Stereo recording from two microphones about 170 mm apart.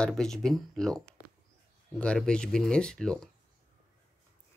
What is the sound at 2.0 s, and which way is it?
Speech, 5° left (ahead or behind).